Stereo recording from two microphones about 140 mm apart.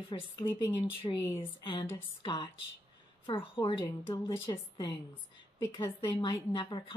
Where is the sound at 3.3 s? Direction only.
40° left (ahead or behind).